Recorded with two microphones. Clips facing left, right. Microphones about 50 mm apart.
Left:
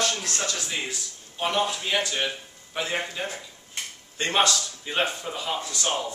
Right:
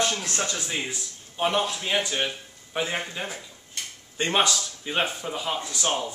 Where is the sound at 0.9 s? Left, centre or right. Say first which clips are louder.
Even; centre.